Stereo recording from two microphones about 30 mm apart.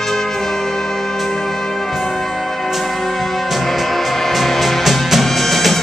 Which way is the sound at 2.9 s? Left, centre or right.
Centre.